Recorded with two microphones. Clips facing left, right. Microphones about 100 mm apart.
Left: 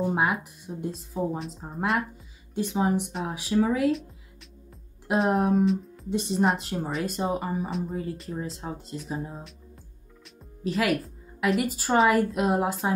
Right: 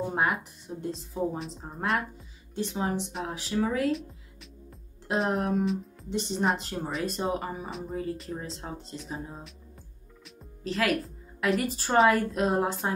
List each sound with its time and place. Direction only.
0.0 s speech: 10° left (ahead or behind)
5.0 s speech: centre (ahead or behind)
10.7 s speech: centre (ahead or behind)